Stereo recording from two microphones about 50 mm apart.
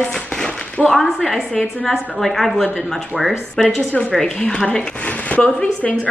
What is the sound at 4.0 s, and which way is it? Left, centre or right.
Speech, centre.